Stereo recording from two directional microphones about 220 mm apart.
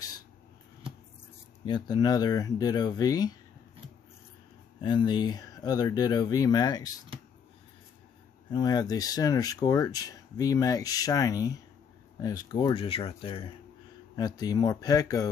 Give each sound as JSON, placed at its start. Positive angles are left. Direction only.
{"t": 1.7, "sound": "speech", "side_deg": 20}
{"t": 4.8, "sound": "speech", "side_deg": 20}
{"t": 8.5, "sound": "speech", "side_deg": 20}